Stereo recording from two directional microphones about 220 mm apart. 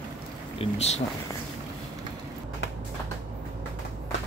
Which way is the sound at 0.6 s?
30° left (ahead or behind).